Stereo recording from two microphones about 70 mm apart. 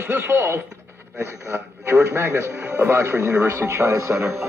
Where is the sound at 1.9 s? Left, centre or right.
Right.